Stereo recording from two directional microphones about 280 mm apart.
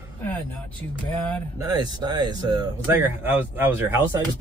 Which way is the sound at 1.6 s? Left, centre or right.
Centre.